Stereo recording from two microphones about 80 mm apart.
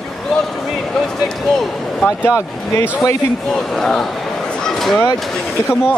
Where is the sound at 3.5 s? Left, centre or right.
Centre.